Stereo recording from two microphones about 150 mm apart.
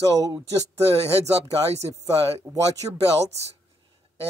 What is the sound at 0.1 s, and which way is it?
Speech, 25° right (ahead or behind).